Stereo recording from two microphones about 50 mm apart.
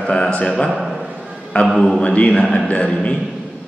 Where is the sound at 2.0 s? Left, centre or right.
Left.